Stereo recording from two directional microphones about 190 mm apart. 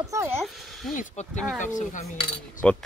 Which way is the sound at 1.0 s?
40° left (ahead or behind).